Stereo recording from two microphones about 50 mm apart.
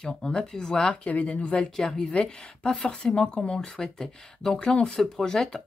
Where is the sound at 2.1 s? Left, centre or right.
Centre.